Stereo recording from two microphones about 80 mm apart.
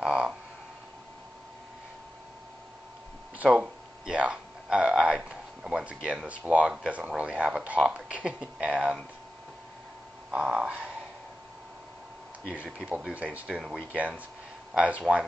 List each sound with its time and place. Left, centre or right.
0.0 s a sound: centre
3.3 s speech: centre
10.3 s speech: centre
12.4 s speech: centre